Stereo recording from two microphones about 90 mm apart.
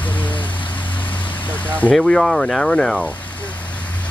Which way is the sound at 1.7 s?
15° left (ahead or behind).